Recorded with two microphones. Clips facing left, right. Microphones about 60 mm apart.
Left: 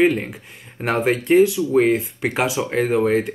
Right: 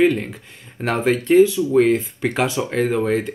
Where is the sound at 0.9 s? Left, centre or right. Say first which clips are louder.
Even; centre.